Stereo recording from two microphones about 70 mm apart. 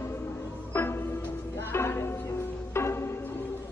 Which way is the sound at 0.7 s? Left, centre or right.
Left.